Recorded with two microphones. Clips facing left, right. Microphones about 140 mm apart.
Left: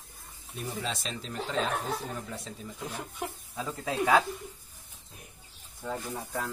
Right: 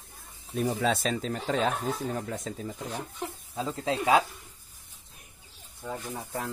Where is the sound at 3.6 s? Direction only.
20° right (ahead or behind).